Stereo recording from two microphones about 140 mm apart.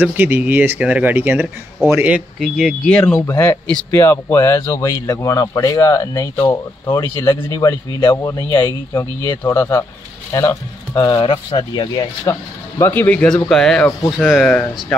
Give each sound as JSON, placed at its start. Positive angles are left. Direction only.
{"t": 0.0, "sound": "speech", "side_deg": -15}
{"t": 3.2, "sound": "speech", "side_deg": 20}
{"t": 8.5, "sound": "speech", "side_deg": 15}